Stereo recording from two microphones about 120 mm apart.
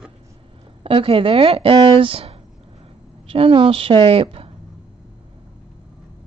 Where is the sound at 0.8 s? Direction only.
50° right (ahead or behind).